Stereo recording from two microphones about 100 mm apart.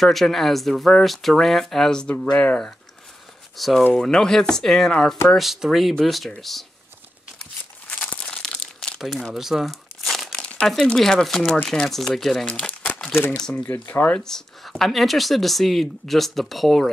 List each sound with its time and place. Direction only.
0.0 s speech: centre (ahead or behind)
3.5 s speech: centre (ahead or behind)
8.0 s crumpling: 10° left (ahead or behind)
9.0 s crumpling: centre (ahead or behind)
10.7 s speech: centre (ahead or behind); by 14.2 s 20° left (ahead or behind)
14.2 s speech: 5° left (ahead or behind)